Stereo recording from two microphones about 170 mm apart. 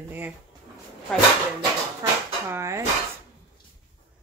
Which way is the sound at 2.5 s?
15° right (ahead or behind).